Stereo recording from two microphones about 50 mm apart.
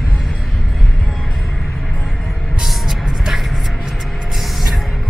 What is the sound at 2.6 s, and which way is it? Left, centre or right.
Music, centre.